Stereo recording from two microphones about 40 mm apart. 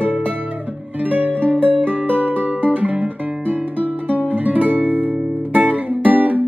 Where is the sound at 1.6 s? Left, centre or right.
Left.